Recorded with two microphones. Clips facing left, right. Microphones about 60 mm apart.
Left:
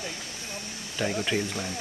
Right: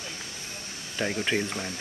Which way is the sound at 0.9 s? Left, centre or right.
Centre.